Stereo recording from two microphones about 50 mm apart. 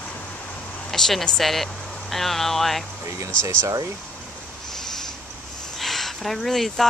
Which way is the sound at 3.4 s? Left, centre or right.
Right.